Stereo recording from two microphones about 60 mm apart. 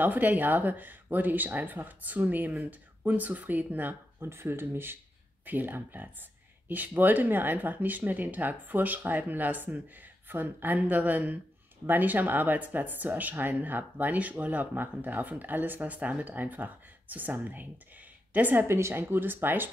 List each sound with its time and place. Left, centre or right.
0.0 s speech: right
4.3 s speech: right
18.7 s speech: right